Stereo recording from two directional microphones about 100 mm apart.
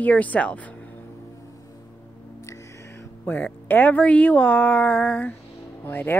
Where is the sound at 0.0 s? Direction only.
15° left (ahead or behind).